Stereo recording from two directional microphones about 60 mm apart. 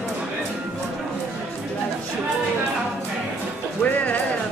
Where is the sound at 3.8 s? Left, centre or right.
Left.